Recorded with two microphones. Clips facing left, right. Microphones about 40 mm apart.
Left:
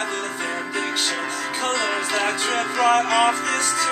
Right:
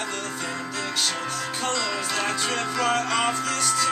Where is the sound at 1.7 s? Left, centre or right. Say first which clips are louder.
Left 4 dB; left.